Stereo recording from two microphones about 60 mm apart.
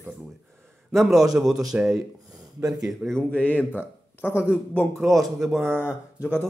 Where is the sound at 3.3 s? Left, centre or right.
Left.